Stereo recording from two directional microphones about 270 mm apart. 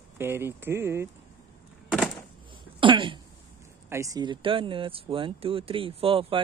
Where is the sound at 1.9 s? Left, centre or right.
Centre.